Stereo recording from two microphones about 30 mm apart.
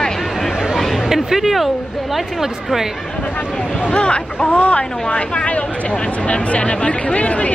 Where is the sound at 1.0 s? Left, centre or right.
Centre.